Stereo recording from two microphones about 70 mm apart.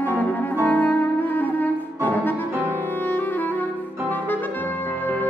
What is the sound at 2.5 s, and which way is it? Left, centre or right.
Music, right.